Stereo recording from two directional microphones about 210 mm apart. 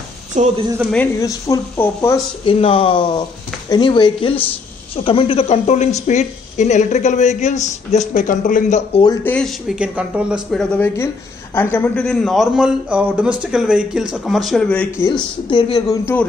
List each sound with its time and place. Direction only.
0.3 s speech: 35° right (ahead or behind)
0.9 s speech: 10° left (ahead or behind)
2.4 s speech: 25° left (ahead or behind)
9.0 s a man's voice: 15° left (ahead or behind)
11.5 s a man's voice: 10° left (ahead or behind)